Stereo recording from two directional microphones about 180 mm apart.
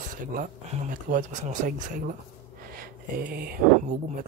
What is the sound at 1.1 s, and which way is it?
Speech, 45° right (ahead or behind).